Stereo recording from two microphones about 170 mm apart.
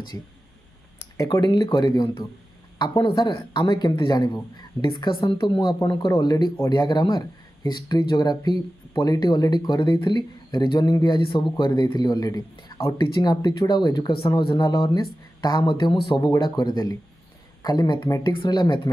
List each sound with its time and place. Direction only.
1.1 s speech: 20° left (ahead or behind)